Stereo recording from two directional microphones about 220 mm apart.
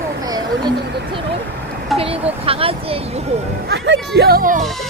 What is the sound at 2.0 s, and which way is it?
Speech, 25° right (ahead or behind).